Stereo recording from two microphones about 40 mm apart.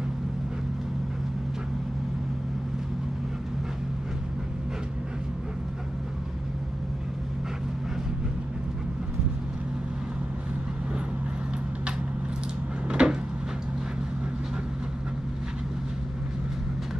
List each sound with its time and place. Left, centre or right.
12.8 s cupboard open or close: right